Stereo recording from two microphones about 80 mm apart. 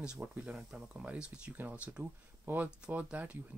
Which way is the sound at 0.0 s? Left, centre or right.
Centre.